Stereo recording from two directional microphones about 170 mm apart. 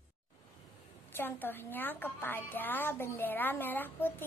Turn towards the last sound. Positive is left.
turn(degrees=10)  # may be behind; listen again after turning